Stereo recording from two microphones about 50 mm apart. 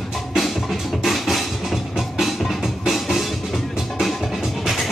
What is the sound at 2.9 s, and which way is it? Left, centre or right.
Music, centre.